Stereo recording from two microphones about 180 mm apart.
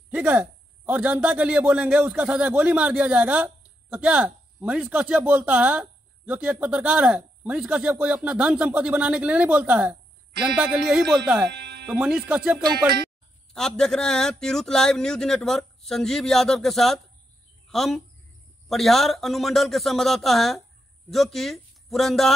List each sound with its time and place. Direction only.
0.1 s a man's voice: 10° right (ahead or behind)
11.5 s music: 65° right (ahead or behind)
11.9 s a man's voice: 5° right (ahead or behind)